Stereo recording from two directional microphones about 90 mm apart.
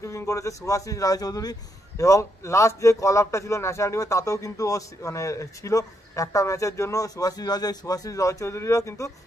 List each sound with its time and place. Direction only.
0.0 s speech: 35° left (ahead or behind)